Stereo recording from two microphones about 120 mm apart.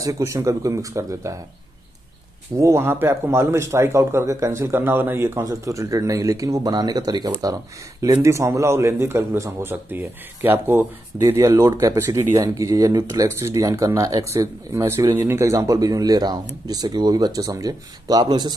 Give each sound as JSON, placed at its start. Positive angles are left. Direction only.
{"t": 0.0, "sound": "speech", "side_deg": -25}
{"t": 2.5, "sound": "speech", "side_deg": -25}